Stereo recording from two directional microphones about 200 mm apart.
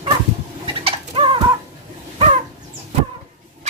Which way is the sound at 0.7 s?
25° right (ahead or behind).